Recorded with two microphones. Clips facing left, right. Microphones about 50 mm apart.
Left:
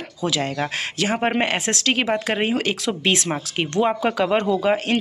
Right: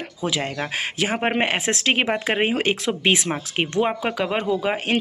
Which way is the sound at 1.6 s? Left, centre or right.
Right.